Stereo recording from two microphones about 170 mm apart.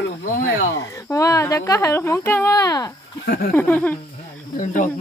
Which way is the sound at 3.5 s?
10° left (ahead or behind).